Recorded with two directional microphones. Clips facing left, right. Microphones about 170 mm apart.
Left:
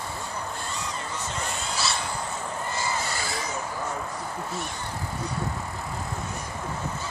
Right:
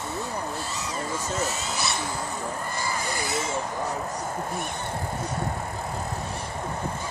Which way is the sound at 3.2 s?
20° right (ahead or behind).